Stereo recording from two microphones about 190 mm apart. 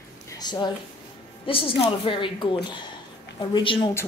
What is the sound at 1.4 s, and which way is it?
Speech, 30° left (ahead or behind).